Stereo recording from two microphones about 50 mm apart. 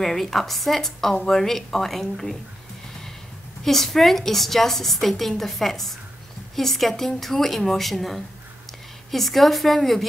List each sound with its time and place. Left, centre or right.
0.0 s a woman's voice: centre
3.6 s a woman's voice: centre